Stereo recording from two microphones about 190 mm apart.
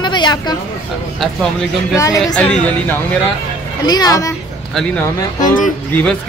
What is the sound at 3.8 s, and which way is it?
Speech, 20° left (ahead or behind).